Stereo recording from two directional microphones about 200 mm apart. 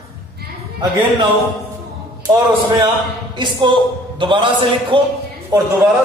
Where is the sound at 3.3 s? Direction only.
25° right (ahead or behind).